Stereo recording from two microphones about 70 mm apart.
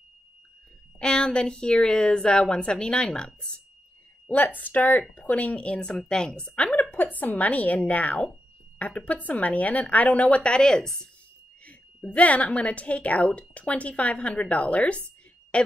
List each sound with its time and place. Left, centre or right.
0.9 s a woman's voice: centre
4.6 s speech: left; by 11.1 s centre
11.6 s speech: centre
15.5 s a sound: centre